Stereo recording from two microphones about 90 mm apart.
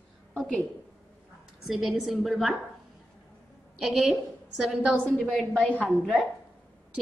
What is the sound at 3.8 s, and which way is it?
A woman's voice, centre (ahead or behind).